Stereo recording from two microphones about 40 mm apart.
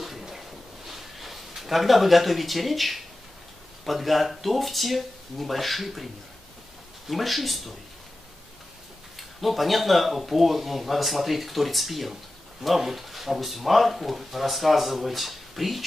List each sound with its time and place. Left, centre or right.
0.2 s a sound: centre
3.8 s speech: centre
7.1 s speech: centre
9.4 s speech: centre